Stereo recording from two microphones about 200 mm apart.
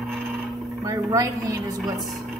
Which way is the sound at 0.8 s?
20° right (ahead or behind).